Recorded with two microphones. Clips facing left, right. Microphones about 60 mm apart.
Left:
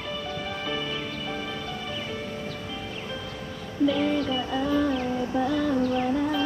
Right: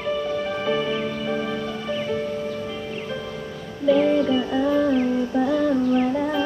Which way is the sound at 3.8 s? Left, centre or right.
Centre.